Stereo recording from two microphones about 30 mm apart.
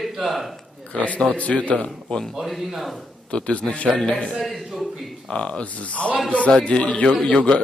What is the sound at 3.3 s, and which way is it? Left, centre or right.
Speech, left.